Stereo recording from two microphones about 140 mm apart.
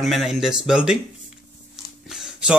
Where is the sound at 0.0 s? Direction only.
Centre (ahead or behind).